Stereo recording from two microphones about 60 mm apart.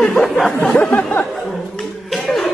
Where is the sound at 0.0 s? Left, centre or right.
Centre.